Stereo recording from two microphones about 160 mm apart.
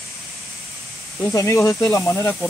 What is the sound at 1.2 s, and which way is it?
Speech, 20° left (ahead or behind).